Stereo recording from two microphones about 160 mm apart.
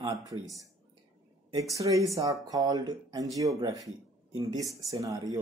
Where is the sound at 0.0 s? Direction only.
20° right (ahead or behind).